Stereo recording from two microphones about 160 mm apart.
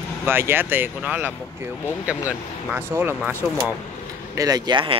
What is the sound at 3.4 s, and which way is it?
Speech, 5° left (ahead or behind).